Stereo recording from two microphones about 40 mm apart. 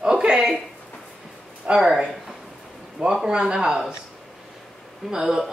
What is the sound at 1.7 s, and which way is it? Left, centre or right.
Speech, centre.